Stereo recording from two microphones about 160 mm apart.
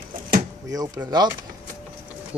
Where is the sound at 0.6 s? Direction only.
20° right (ahead or behind).